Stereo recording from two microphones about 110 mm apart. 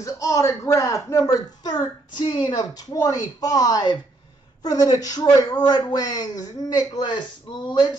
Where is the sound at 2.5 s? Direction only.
35° left (ahead or behind).